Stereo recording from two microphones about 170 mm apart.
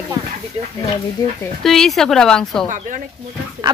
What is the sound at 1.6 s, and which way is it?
A woman's voice, centre (ahead or behind).